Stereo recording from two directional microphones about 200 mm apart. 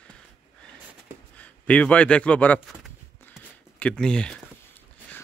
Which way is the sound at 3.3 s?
5° left (ahead or behind).